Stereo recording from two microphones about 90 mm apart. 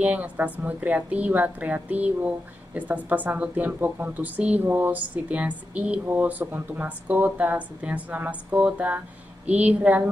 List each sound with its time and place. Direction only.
0.0 s a woman's voice: 15° right (ahead or behind)